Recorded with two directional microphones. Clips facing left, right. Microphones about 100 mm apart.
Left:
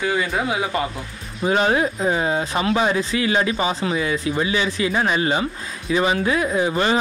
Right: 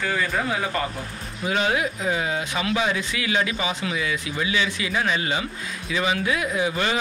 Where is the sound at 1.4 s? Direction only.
35° left (ahead or behind).